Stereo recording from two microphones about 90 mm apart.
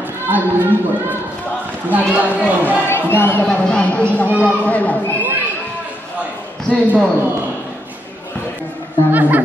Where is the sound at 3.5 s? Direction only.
10° left (ahead or behind).